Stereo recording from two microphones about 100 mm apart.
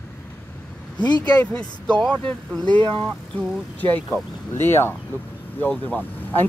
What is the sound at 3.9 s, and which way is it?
Speech, 20° left (ahead or behind).